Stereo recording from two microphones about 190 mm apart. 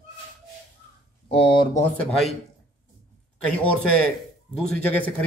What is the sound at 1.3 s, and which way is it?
Speech, 30° left (ahead or behind).